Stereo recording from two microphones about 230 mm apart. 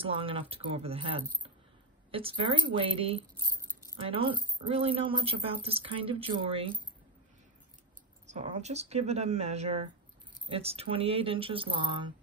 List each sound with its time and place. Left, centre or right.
0.0 s speech: right
8.3 s speech: right